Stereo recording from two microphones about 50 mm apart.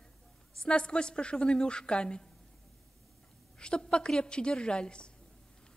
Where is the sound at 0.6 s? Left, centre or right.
Centre.